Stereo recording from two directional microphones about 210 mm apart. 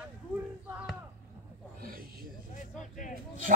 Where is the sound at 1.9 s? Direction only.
45° right (ahead or behind).